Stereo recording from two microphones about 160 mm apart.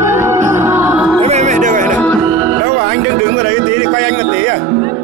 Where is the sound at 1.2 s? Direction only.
45° right (ahead or behind).